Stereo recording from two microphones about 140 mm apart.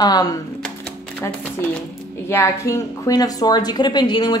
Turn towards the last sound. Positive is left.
turn(degrees=30)  # may be behind; listen again after turning